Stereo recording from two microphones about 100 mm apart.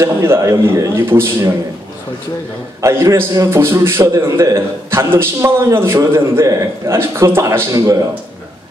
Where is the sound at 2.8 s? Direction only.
30° right (ahead or behind).